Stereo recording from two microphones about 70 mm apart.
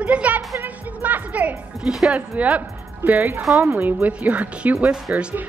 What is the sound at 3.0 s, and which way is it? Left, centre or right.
Speech, right.